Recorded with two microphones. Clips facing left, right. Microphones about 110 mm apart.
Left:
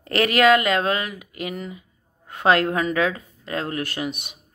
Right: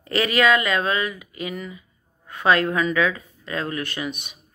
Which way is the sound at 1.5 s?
55° left (ahead or behind).